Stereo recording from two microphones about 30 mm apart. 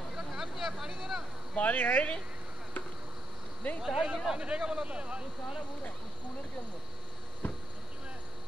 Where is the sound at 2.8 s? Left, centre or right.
Left.